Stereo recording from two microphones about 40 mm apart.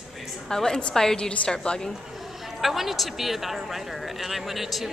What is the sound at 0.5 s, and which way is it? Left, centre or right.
A woman's voice, centre.